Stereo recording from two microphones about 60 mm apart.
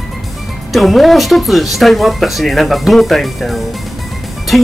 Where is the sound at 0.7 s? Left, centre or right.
Centre.